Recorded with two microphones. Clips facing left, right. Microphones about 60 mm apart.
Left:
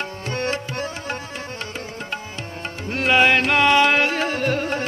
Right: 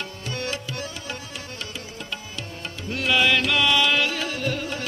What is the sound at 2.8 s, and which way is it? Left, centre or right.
Music, left.